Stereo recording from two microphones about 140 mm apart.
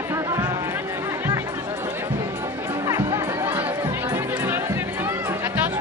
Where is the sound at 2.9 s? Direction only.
20° right (ahead or behind).